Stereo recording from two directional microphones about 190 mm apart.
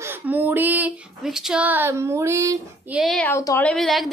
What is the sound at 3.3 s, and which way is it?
Speech, 15° left (ahead or behind).